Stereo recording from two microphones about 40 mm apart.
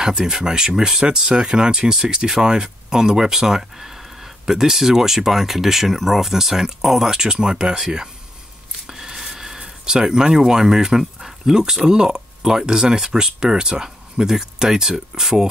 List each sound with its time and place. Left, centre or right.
0.0 s speech: centre
8.8 s a sound: centre
9.6 s speech: centre